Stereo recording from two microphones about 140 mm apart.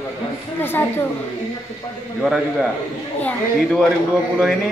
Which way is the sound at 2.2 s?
Centre (ahead or behind).